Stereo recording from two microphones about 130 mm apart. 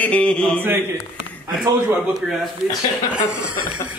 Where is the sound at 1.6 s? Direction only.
5° right (ahead or behind).